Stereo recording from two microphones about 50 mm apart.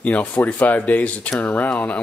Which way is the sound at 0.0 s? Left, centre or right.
Left.